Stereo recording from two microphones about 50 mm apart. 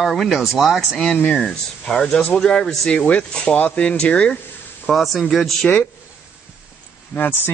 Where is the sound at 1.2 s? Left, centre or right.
Left.